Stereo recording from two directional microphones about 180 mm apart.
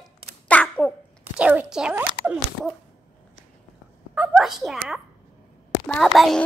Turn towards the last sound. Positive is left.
turn(degrees=0)  # may be behind; listen again after turning